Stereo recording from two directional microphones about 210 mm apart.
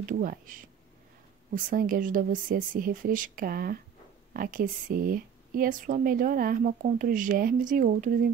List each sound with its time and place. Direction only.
0.0 s speech: 40° right (ahead or behind)